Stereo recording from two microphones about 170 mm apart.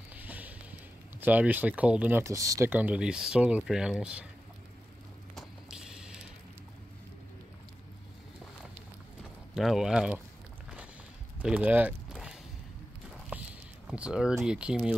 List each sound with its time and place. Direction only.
0.1 s music: 10° right (ahead or behind)
1.2 s speech: 10° right (ahead or behind)
5.3 s a sound: centre (ahead or behind)
9.5 s speech: centre (ahead or behind)
11.3 s a sound: 10° right (ahead or behind)
13.8 s speech: 5° right (ahead or behind)